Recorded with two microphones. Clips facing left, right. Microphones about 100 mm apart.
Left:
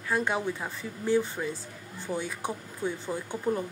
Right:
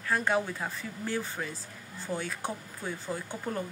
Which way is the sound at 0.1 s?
15° left (ahead or behind).